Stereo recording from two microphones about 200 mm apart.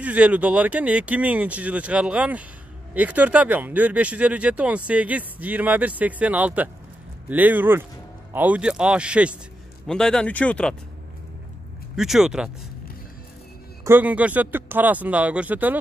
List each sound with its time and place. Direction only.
0.0 s speech: 5° right (ahead or behind)
11.9 s speech: centre (ahead or behind)
13.8 s speech: 10° right (ahead or behind)